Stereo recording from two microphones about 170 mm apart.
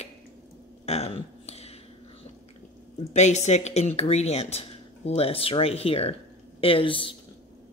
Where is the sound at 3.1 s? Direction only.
40° left (ahead or behind).